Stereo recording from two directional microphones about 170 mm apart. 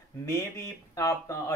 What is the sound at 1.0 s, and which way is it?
Speech, 20° left (ahead or behind).